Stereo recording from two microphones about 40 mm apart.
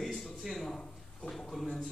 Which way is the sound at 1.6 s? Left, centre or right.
Centre.